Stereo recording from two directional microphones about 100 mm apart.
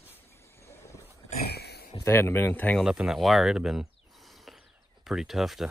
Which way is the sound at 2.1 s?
25° left (ahead or behind).